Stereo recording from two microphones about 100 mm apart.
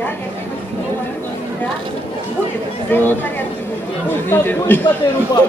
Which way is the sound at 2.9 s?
20° left (ahead or behind).